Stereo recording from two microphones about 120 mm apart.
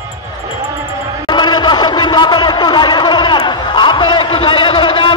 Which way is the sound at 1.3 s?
40° left (ahead or behind).